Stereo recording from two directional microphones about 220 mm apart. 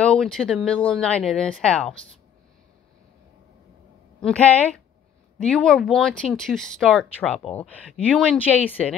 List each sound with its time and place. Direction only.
0.0 s speech: 5° left (ahead or behind)
4.2 s speech: 5° left (ahead or behind)